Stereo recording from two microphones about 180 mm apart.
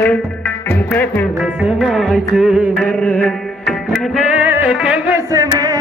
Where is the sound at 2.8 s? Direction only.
10° left (ahead or behind).